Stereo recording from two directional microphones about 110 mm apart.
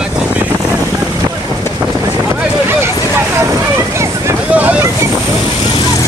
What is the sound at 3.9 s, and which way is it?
Vehicle, 25° right (ahead or behind).